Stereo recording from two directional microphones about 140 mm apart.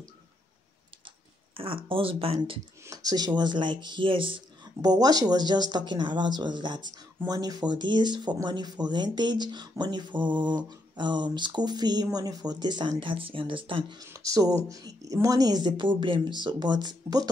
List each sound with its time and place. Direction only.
1.5 s speech: 40° right (ahead or behind)
2.8 s speech: 25° right (ahead or behind)
4.8 s speech: 25° right (ahead or behind)
14.1 s speech: 25° right (ahead or behind)